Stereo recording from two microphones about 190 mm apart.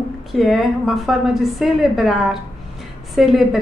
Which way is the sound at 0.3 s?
Centre (ahead or behind).